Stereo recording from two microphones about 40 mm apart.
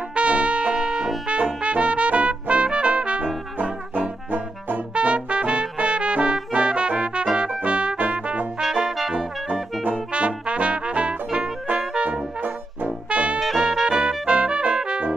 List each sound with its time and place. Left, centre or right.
0.1 s trumpet: right
0.7 s brass instrument: centre
1.2 s trumpet: right
3.5 s trombone: right
4.9 s brass instrument: right
8.5 s brass instrument: centre
9.5 s brass instrument: right
13.1 s music: right
13.6 s music: centre
13.9 s music: right